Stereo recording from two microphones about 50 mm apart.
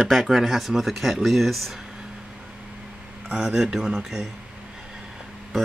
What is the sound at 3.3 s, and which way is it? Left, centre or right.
Speech, centre.